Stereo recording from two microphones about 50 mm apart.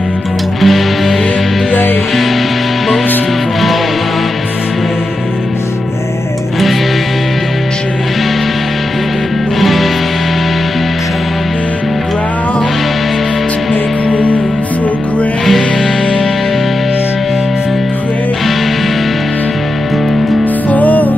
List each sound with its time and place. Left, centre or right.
0.6 s music: centre
9.6 s music: centre
14.1 s music: left
20.7 s music: left